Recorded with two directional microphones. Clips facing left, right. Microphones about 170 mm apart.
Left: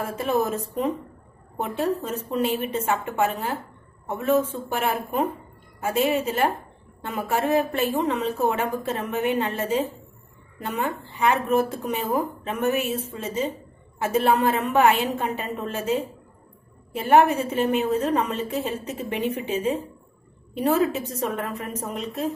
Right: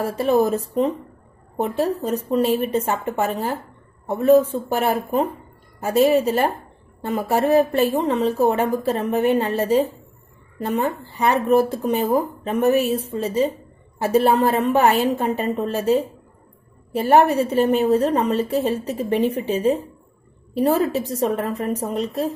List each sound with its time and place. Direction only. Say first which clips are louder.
0.0 s speech: right 6 dB; 35° right (ahead or behind)
1.6 s speech: right 4 dB; 35° right (ahead or behind)